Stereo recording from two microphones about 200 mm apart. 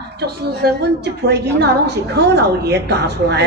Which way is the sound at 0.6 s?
55° right (ahead or behind).